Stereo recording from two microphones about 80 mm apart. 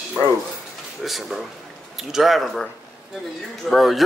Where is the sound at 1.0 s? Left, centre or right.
Centre.